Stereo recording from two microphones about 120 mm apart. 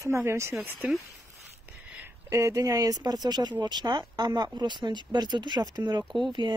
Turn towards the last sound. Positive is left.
turn(degrees=-40)  # may be behind; listen again after turning